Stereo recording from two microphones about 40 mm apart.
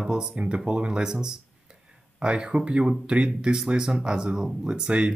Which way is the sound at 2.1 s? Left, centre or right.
Right.